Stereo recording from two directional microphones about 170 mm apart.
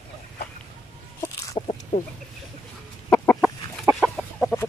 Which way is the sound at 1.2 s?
20° left (ahead or behind).